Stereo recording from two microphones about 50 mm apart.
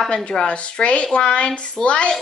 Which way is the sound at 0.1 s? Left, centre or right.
Centre.